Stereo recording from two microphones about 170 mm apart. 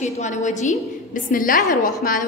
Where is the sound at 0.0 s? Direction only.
45° left (ahead or behind).